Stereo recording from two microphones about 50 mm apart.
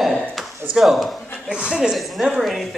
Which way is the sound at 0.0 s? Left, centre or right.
Centre.